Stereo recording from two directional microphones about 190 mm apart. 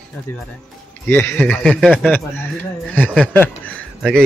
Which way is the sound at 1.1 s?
10° left (ahead or behind).